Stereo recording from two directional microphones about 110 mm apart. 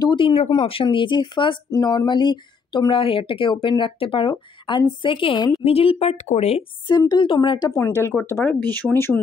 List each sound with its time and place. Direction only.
0.0 s a sound: 50° left (ahead or behind)
0.5 s speech: 55° left (ahead or behind)
1.7 s speech: 35° left (ahead or behind); by 5.5 s 50° left (ahead or behind)
5.6 s speech: 60° left (ahead or behind)
6.9 s speech: 40° left (ahead or behind)
7.7 s speech: 25° left (ahead or behind)